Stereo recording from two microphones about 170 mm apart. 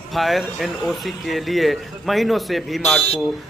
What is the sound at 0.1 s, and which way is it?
Speech, centre (ahead or behind).